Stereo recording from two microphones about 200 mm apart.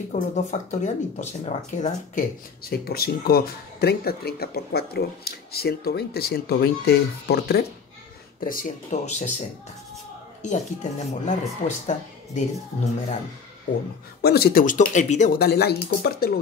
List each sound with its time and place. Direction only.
0.1 s speech: 35° left (ahead or behind)
2.7 s speech: 50° left (ahead or behind)
10.4 s speech: 35° left (ahead or behind)
14.2 s speech: 50° left (ahead or behind)